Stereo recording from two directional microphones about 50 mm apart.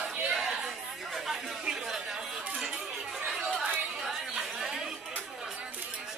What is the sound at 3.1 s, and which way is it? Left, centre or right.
Chatter, centre.